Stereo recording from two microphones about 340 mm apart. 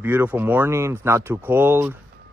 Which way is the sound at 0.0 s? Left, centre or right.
Centre.